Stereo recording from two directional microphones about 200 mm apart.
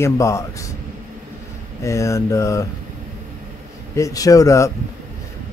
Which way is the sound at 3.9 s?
15° left (ahead or behind).